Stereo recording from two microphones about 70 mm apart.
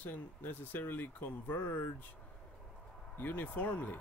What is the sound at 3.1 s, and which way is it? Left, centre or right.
Speech, left.